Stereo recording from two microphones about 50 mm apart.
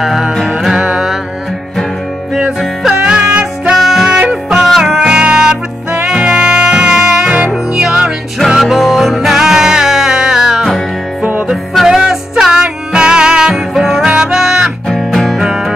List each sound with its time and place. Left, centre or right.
0.0 s music: centre
0.7 s music: right
3.0 s music: centre
3.7 s music: centre
8.5 s music: centre
11.9 s music: centre
15.0 s music: centre
15.4 s music: centre